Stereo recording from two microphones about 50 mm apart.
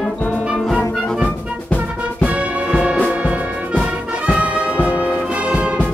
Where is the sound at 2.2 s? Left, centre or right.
Right.